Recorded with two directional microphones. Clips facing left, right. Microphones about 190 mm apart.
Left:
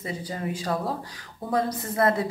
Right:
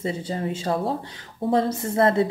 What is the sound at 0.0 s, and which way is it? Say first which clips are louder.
A woman's voice: right 4 dB; 25° right (ahead or behind).